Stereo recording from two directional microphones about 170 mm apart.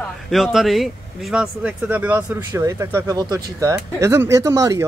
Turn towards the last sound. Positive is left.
turn(degrees=-20)  # may be behind; listen again after turning